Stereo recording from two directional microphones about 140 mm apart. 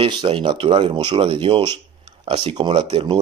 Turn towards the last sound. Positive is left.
turn(degrees=-50)  # may be behind; listen again after turning